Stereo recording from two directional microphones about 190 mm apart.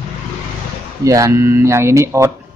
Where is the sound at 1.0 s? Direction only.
15° right (ahead or behind).